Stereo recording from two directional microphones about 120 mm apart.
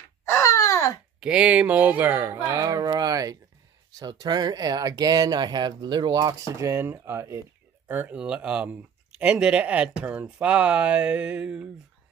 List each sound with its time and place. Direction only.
0.2 s a sound: 25° left (ahead or behind)
1.2 s speech: 10° right (ahead or behind); by 6.7 s 35° right (ahead or behind)
6.7 s speech: 20° right (ahead or behind)
7.9 s speech: 15° right (ahead or behind)